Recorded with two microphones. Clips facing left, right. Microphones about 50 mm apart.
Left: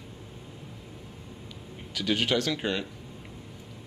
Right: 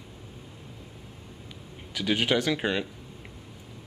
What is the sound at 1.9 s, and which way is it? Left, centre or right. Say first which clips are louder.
Speech: right 1 dB; centre.